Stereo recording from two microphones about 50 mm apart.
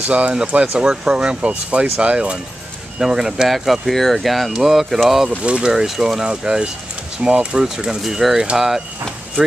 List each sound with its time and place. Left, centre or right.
0.1 s speech: right
3.0 s speech: centre
5.4 s speech: right
5.7 s speech: centre